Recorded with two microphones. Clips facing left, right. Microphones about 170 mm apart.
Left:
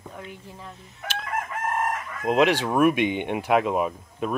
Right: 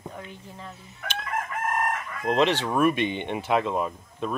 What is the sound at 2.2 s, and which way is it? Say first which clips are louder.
Speech: left 2 dB; 10° left (ahead or behind).